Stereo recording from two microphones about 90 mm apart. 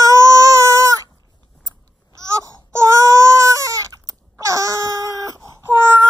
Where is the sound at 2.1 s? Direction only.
35° right (ahead or behind).